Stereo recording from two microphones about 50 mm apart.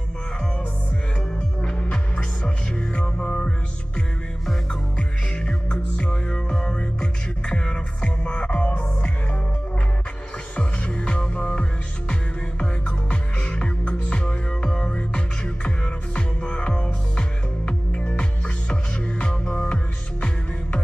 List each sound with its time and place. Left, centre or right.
1.6 s music: centre
4.9 s music: centre
10.5 s music: left